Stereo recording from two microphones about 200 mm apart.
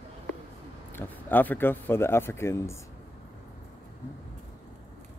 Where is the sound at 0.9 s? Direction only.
10° left (ahead or behind).